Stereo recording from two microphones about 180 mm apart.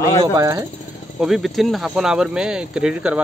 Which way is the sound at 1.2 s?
Centre (ahead or behind).